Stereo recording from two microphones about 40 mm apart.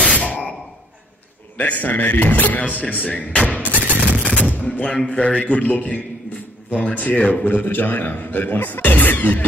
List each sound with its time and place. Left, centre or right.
1.6 s a man's voice: left
3.4 s a sound: left
3.7 s fusillade: right
4.4 s a sound: left
5.0 s a man's voice: left
5.4 s a man's voice: left
7.4 s a man's voice: left